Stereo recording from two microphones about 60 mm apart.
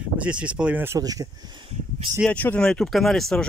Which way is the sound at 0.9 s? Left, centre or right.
Right.